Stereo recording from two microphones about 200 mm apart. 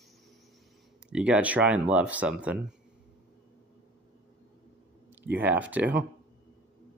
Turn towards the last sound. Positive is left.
turn(degrees=-10)  # may be behind; listen again after turning